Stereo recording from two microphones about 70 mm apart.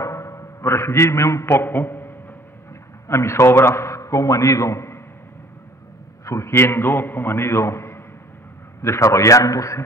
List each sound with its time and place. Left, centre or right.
0.0 s a sound: left
3.1 s a man's voice: left
6.2 s a man's voice: left